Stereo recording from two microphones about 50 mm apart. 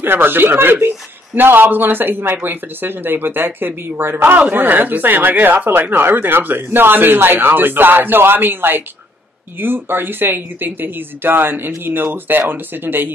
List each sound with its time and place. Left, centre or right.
0.0 s speech: right
5.9 s speech: right